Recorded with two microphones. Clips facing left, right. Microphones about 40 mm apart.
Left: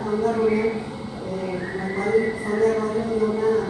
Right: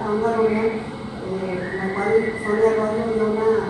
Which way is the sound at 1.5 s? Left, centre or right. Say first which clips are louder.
Right 2 dB; centre.